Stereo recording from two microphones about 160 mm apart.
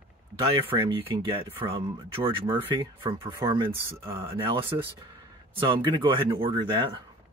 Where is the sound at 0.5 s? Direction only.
35° right (ahead or behind).